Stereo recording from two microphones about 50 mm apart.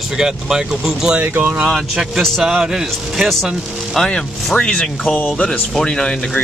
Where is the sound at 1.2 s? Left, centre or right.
Right.